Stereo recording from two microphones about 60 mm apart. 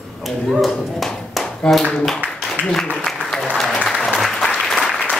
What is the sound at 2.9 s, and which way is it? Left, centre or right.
Applause, centre.